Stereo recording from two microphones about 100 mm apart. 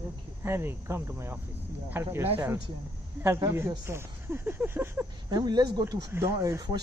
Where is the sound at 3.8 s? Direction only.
25° right (ahead or behind).